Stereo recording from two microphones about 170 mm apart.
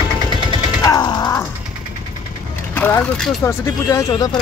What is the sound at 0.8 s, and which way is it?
Mechanisms, 25° left (ahead or behind).